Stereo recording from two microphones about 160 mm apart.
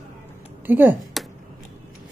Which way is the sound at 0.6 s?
10° right (ahead or behind).